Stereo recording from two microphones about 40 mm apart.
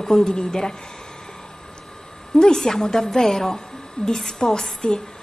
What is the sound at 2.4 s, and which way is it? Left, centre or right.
A woman's voice, centre.